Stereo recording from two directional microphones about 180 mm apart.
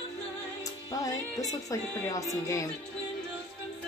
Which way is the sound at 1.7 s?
20° left (ahead or behind).